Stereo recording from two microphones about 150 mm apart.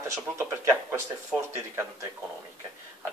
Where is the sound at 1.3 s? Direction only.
5° right (ahead or behind).